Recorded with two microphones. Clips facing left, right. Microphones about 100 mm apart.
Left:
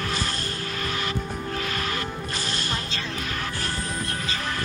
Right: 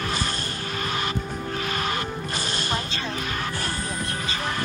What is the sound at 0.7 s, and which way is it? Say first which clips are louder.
Music: right 3 dB; 20° right (ahead or behind).